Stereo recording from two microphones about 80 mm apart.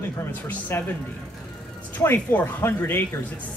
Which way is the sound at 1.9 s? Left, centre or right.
Left.